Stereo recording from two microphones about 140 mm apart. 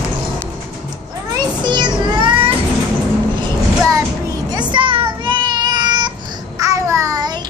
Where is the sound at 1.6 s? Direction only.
35° right (ahead or behind).